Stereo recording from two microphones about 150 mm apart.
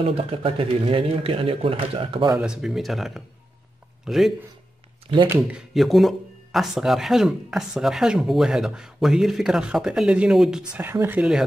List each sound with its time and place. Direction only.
0.0 s speech: 40° right (ahead or behind)
2.3 s speech: 5° right (ahead or behind)
5.0 s speech: 35° right (ahead or behind)
5.3 s speech: 5° right (ahead or behind)